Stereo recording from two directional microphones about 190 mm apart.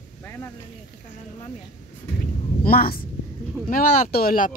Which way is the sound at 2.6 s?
50° left (ahead or behind).